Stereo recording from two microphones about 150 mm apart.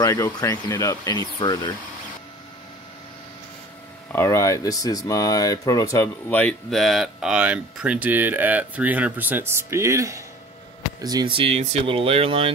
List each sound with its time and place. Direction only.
0.0 s speech: 20° left (ahead or behind)
4.1 s speech: 15° left (ahead or behind); by 12.4 s 40° right (ahead or behind)